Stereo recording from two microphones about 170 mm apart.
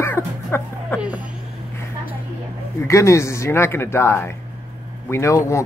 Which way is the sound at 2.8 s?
15° left (ahead or behind).